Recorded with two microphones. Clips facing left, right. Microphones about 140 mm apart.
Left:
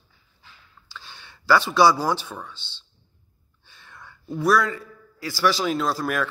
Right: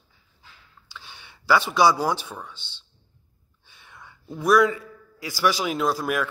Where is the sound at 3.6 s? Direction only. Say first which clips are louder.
Left 1 dB; 20° right (ahead or behind).